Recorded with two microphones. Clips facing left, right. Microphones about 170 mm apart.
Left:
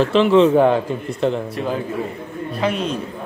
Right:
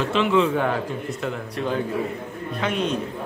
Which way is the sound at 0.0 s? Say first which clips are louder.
Left 7 dB; 35° left (ahead or behind).